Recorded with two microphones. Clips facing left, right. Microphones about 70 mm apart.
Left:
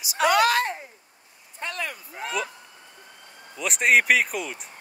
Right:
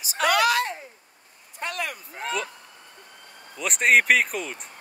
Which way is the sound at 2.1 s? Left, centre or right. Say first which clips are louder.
Even; centre.